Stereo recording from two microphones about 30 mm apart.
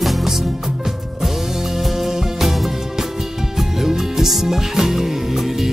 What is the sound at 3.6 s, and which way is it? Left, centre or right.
Music, centre.